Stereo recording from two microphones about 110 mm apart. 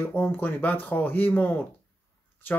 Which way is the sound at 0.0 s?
15° left (ahead or behind).